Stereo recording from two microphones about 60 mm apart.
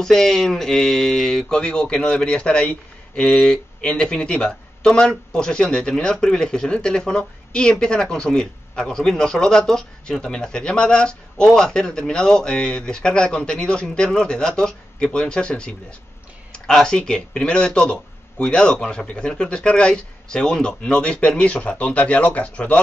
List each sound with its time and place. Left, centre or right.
0.0 s speech: centre; by 22.8 s left